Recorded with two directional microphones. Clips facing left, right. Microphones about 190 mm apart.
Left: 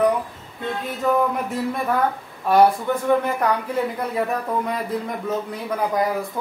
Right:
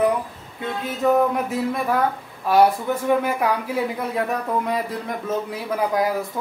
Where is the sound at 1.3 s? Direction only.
Centre (ahead or behind).